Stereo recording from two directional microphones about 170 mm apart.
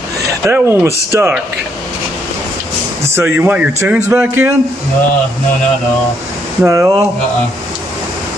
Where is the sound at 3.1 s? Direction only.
10° right (ahead or behind).